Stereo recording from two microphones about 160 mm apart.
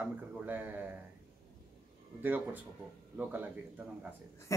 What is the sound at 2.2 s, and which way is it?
A man's voice, 10° right (ahead or behind).